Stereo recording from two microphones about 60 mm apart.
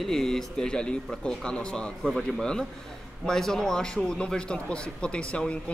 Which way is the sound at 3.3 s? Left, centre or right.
Centre.